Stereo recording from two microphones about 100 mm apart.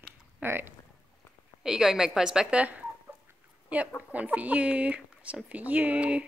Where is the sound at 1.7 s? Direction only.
5° right (ahead or behind).